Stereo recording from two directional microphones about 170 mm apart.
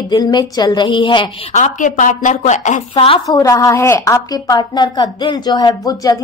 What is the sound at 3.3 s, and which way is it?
A woman's voice, 20° left (ahead or behind).